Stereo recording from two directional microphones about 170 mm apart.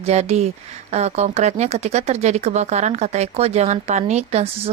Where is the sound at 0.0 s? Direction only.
40° right (ahead or behind).